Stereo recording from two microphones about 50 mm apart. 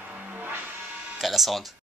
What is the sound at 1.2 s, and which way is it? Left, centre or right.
Speech, centre.